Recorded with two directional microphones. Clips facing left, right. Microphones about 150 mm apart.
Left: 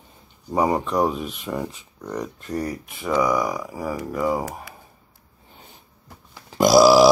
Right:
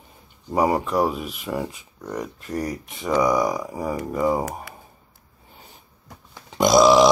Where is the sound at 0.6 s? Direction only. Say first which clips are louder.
Even; 5° right (ahead or behind).